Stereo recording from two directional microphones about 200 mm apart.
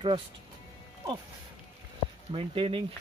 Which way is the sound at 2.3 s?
25° right (ahead or behind).